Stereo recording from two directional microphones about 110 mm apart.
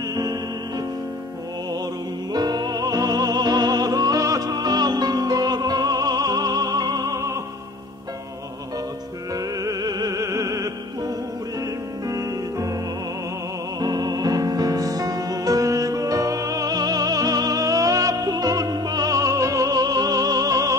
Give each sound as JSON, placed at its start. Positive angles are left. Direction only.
{"t": 0.1, "sound": "music", "side_deg": -35}
{"t": 2.3, "sound": "music", "side_deg": -40}
{"t": 9.3, "sound": "music", "side_deg": -35}
{"t": 13.7, "sound": "music", "side_deg": -40}